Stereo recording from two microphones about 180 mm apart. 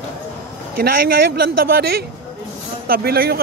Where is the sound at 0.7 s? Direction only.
55° right (ahead or behind).